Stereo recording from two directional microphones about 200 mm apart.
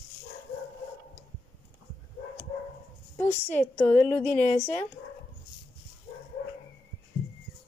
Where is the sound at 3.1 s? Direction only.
10° left (ahead or behind).